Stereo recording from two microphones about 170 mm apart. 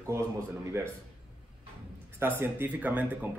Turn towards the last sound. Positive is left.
turn(degrees=-10)  # may be behind; listen again after turning